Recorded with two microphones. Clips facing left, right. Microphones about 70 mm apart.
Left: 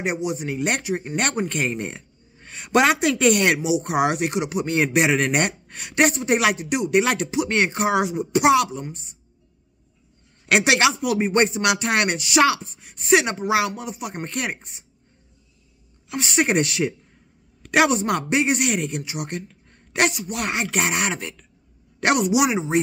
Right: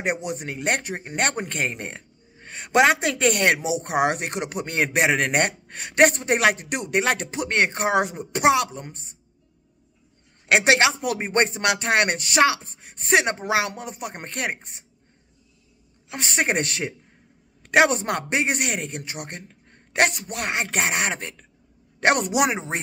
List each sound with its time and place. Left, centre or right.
0.0 s speech: right
0.7 s a man's voice: right
10.5 s a man's voice: right
16.1 s a man's voice: right